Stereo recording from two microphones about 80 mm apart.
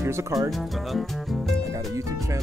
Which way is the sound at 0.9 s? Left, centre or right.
Centre.